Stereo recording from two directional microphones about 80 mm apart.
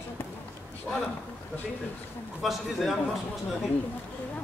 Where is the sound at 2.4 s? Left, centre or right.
Centre.